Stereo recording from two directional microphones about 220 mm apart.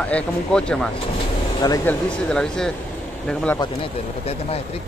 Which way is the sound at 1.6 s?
15° left (ahead or behind).